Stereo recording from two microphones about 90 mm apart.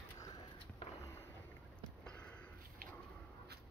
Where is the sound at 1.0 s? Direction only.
25° left (ahead or behind).